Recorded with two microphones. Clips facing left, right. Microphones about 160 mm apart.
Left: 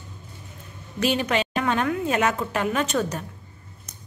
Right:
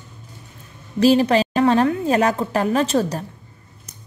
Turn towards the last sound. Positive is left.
turn(degrees=-35)  # may be behind; listen again after turning